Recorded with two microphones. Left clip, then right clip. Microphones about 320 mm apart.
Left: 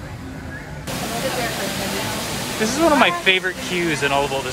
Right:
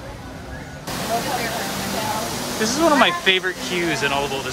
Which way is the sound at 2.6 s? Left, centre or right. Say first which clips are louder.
Left 1 dB; centre.